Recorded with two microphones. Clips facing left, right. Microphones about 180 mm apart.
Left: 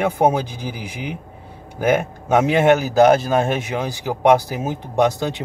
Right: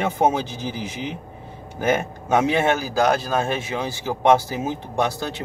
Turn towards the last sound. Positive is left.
turn(degrees=20)  # may be behind; listen again after turning